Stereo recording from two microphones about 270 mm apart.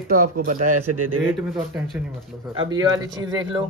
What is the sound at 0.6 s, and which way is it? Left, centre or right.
Speech, right.